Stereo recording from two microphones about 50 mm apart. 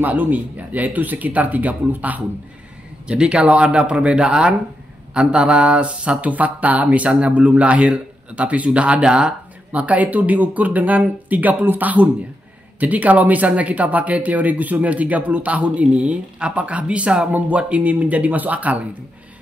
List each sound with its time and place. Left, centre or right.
0.0 s speech: right
3.1 s speech: centre
9.7 s speech: right